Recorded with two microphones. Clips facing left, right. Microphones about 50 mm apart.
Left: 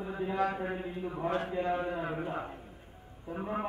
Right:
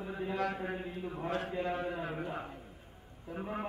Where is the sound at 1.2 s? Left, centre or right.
Centre.